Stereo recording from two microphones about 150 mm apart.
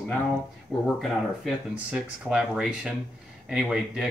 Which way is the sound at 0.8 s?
Centre (ahead or behind).